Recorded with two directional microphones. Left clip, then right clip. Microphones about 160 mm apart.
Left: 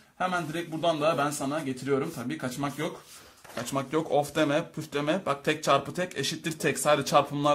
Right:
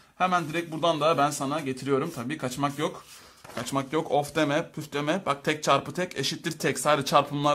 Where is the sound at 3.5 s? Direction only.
20° right (ahead or behind).